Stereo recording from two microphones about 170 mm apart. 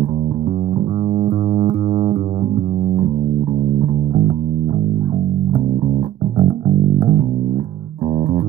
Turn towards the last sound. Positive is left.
turn(degrees=-30)  # may be behind; listen again after turning